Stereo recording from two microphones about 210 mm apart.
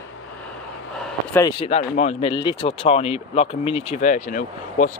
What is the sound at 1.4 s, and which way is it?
Speech, 25° left (ahead or behind).